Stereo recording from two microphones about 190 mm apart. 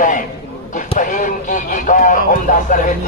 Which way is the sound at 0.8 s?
40° left (ahead or behind).